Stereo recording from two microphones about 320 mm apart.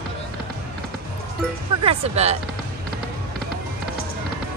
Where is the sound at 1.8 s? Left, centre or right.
Centre.